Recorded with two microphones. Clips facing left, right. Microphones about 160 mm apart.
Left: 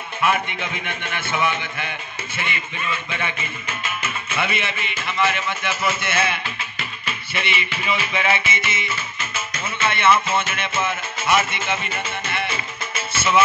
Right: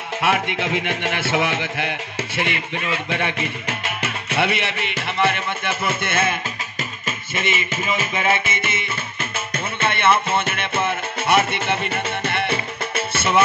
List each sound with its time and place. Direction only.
0.2 s a man's voice: 85° right; by 13.4 s 60° right (ahead or behind)